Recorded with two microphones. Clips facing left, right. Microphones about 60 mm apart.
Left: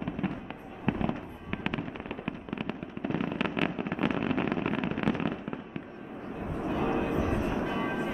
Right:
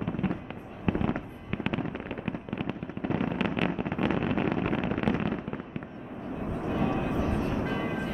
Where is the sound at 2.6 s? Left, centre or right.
Centre.